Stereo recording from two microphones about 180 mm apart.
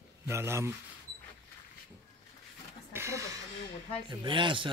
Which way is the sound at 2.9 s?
15° right (ahead or behind).